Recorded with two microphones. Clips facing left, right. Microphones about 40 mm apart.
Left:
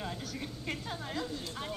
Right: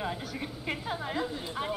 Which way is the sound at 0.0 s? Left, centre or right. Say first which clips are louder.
Right 4 dB; centre.